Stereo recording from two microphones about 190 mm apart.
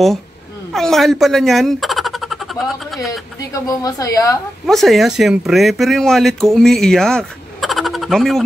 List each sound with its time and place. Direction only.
0.7 s speech: centre (ahead or behind)
3.1 s a woman's voice: 15° left (ahead or behind)
4.6 s speech: centre (ahead or behind)